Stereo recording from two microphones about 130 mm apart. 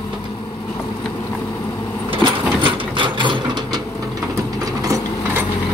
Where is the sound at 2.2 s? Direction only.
40° right (ahead or behind).